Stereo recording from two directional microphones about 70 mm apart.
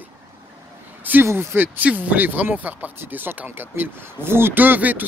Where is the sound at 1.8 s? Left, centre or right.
Centre.